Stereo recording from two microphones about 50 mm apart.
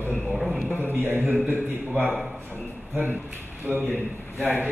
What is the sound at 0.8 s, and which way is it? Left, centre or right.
Speech, right.